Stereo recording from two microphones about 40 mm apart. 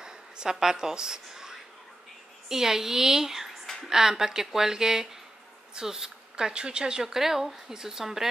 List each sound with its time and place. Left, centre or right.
0.0 s a sound: centre
2.5 s speech: centre
7.0 s speech: centre